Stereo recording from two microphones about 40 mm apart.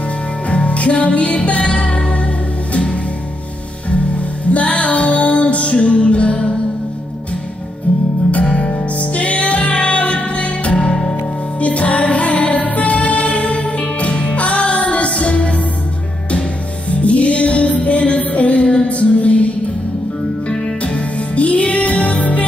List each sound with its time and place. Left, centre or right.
0.5 s music: left
3.9 s music: left
8.5 s music: left
16.9 s music: left